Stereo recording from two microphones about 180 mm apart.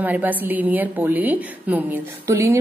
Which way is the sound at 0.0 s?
10° right (ahead or behind).